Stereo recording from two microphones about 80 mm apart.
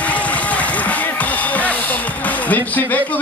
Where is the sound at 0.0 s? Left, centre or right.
Centre.